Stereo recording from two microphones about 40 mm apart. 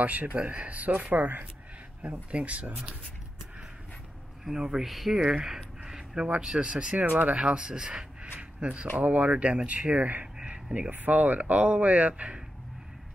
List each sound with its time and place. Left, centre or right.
0.0 s speech: right
4.5 s speech: centre
6.1 s speech: right
8.4 s a sound: right
8.9 s speech: right
10.4 s a sound: right
10.9 s speech: right